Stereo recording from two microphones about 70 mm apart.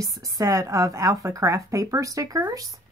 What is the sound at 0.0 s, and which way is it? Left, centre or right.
A woman's voice, right.